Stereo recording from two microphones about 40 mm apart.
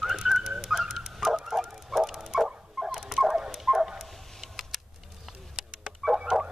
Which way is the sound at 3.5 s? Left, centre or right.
Centre.